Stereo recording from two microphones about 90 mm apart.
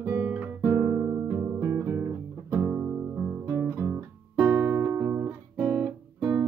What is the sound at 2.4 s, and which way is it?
Music, 30° right (ahead or behind).